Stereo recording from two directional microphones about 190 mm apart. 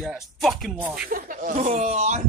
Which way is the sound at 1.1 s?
45° right (ahead or behind).